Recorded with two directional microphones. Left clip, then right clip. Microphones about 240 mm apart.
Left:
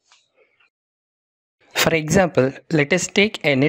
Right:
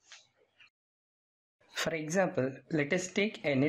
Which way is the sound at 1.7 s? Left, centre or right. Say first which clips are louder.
Left 14 dB; left.